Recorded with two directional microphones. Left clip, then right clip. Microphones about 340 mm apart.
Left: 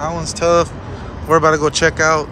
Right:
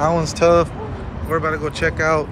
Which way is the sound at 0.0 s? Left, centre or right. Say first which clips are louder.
Right 2 dB; centre.